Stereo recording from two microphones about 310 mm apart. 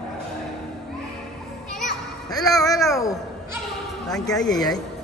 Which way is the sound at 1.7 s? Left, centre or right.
Left.